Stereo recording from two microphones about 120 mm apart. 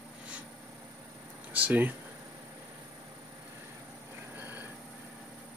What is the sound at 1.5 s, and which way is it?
Speech, 15° right (ahead or behind).